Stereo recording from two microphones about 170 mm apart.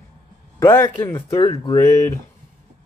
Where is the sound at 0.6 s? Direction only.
15° left (ahead or behind).